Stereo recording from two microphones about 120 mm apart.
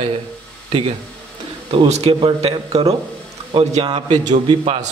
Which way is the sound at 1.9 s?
55° right (ahead or behind).